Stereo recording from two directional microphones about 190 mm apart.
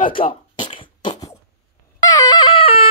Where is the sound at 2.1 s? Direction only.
20° left (ahead or behind).